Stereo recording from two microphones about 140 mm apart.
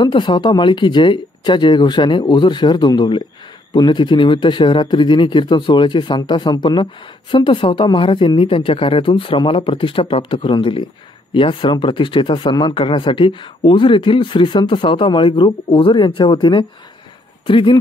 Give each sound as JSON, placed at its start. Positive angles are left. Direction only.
{"t": 0.0, "sound": "a man's voice", "side_deg": 35}